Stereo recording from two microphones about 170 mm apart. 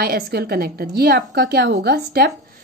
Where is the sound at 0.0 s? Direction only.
65° right (ahead or behind).